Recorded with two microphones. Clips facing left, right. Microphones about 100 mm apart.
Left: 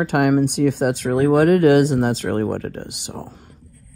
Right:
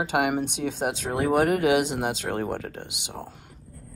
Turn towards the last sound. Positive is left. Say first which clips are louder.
# left 5 dB
turn(degrees=40)  # may be behind; listen again after turning